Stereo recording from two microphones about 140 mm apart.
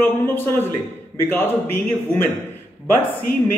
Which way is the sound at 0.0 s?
15° left (ahead or behind).